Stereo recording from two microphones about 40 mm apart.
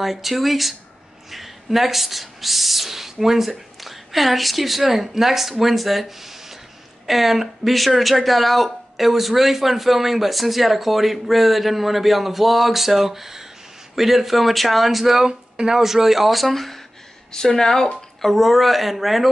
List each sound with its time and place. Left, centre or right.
0.0 s speech: centre